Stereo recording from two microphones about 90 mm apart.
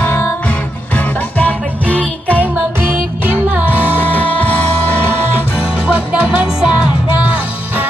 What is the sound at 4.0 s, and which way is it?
Music, 20° left (ahead or behind).